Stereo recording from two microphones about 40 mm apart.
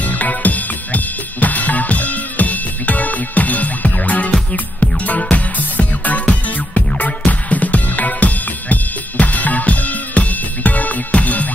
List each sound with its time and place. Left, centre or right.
0.0 s music: left